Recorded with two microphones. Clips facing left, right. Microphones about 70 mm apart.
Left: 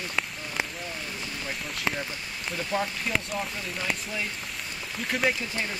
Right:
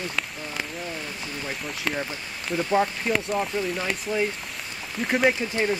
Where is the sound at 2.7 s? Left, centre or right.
Right.